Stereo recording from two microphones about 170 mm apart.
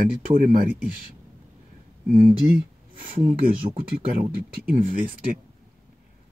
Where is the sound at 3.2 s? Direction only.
50° right (ahead or behind).